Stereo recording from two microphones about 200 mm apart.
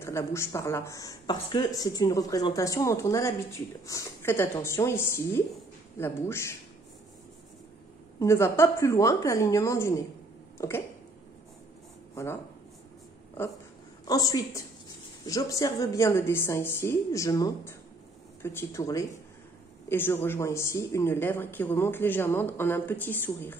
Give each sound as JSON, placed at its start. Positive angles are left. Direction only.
{"t": 0.0, "sound": "speech", "side_deg": 15}
{"t": 8.2, "sound": "speech", "side_deg": 15}
{"t": 10.6, "sound": "a sound", "side_deg": 15}
{"t": 14.0, "sound": "speech", "side_deg": 20}